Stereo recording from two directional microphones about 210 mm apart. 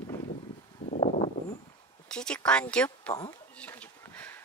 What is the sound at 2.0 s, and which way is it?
Speech, 5° left (ahead or behind).